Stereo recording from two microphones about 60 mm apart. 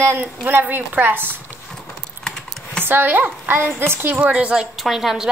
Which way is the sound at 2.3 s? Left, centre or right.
Centre.